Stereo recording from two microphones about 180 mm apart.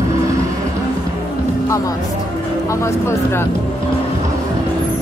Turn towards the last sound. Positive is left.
turn(degrees=15)  # may be behind; listen again after turning